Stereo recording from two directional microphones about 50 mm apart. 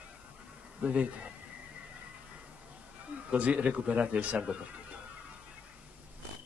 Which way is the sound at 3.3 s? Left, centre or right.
Right.